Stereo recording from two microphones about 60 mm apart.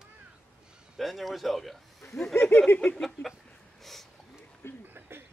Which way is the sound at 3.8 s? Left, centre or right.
Centre.